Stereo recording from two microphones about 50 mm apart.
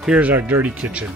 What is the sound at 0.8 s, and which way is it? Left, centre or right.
Speech, right.